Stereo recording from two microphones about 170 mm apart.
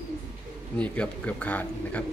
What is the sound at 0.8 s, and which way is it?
Speech, 5° left (ahead or behind).